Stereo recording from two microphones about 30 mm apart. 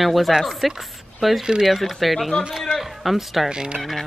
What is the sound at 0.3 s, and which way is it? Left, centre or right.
Speech, centre.